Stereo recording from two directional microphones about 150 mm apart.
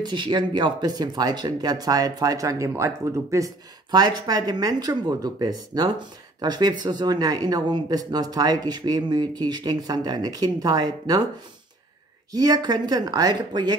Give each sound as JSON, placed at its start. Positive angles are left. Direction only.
{"t": 0.0, "sound": "speech", "side_deg": -30}
{"t": 12.3, "sound": "speech", "side_deg": -25}